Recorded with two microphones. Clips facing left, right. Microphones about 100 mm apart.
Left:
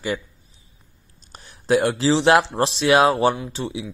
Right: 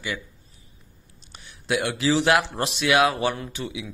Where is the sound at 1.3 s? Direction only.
40° left (ahead or behind).